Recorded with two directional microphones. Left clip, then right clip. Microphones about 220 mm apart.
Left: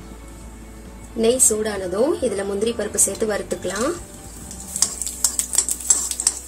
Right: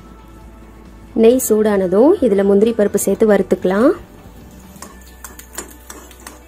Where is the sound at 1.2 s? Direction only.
40° right (ahead or behind).